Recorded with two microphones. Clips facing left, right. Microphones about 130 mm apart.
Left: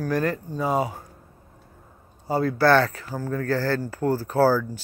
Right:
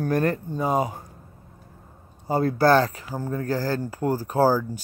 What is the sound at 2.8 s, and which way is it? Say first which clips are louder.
Speech: even; 20° right (ahead or behind).